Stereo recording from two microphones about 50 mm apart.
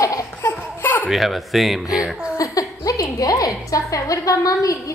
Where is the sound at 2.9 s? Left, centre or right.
Left.